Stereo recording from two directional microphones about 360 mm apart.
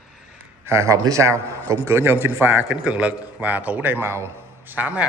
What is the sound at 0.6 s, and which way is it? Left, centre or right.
A man's voice, centre.